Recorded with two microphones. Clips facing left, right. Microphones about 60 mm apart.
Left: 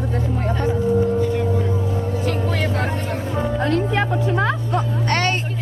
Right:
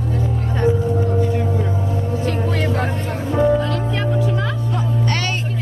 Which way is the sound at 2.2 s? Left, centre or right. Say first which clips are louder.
Right 2 dB; centre.